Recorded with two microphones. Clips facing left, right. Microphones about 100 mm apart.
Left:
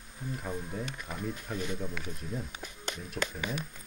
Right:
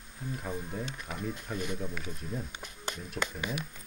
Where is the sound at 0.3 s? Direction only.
Centre (ahead or behind).